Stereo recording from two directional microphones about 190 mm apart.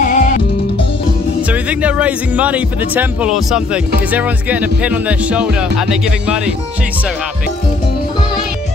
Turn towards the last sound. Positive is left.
turn(degrees=-5)  # may be behind; listen again after turning